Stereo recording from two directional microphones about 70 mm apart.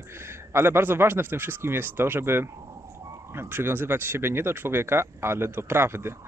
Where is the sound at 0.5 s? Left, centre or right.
Right.